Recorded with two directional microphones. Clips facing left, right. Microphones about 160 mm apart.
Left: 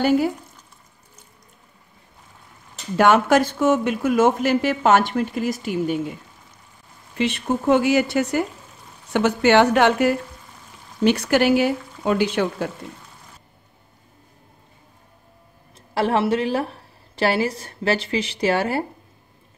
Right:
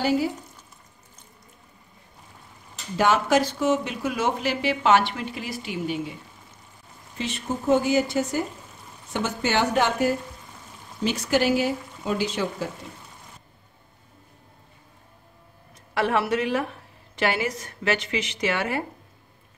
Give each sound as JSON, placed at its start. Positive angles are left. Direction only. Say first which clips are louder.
{"t": 0.0, "sound": "speech", "louder": "left 5 dB", "side_deg": 55}
{"t": 3.0, "sound": "speech", "louder": "left 5 dB", "side_deg": 55}
{"t": 7.2, "sound": "speech", "louder": "left 7 dB", "side_deg": 65}
{"t": 15.9, "sound": "a woman's voice", "louder": "left 4 dB", "side_deg": 30}